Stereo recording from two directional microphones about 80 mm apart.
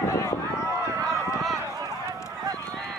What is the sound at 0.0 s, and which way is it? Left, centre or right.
Run, left.